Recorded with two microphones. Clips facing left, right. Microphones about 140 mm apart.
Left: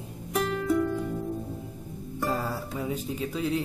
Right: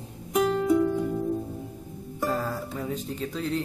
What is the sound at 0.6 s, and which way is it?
Music, 20° right (ahead or behind).